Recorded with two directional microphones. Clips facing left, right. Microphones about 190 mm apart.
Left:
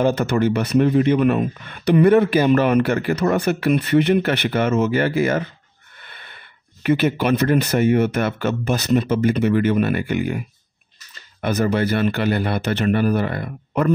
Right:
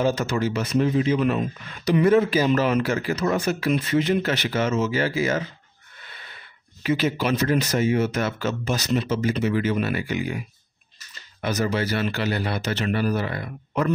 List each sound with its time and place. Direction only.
0.0 s speech: 60° left (ahead or behind)
11.4 s speech: 55° left (ahead or behind)